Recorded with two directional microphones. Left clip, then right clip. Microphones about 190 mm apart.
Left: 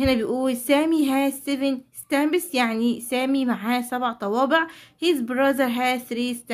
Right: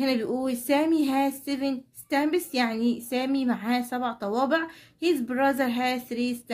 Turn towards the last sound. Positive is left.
turn(degrees=25)  # may be behind; listen again after turning